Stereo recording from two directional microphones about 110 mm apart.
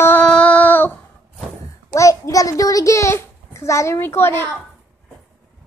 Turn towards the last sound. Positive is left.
turn(degrees=20)  # may be behind; listen again after turning